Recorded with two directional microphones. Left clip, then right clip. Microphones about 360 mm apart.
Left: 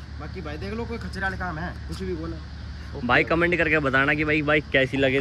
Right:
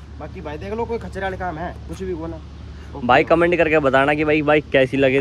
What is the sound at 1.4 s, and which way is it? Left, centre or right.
Speech, right.